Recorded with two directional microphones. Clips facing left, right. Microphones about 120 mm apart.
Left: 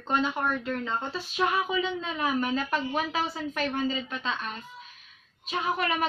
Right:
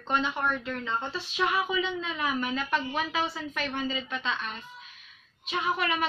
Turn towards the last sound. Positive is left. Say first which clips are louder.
# left 1 dB
turn(degrees=40)  # may be behind; listen again after turning